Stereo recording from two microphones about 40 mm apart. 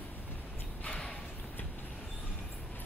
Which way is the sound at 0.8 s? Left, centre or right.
Left.